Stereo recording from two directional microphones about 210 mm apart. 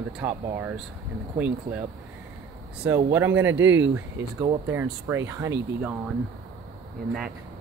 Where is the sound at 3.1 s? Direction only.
10° right (ahead or behind).